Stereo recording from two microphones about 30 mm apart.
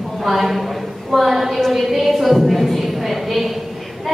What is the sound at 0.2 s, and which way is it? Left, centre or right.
A woman's voice, centre.